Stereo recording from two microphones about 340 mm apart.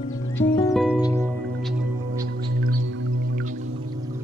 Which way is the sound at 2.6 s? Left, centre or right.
Right.